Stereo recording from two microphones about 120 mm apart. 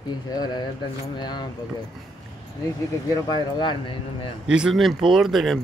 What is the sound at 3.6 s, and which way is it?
Speech, 40° left (ahead or behind).